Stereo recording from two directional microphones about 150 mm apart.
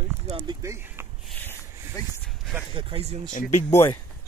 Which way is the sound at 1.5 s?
20° left (ahead or behind).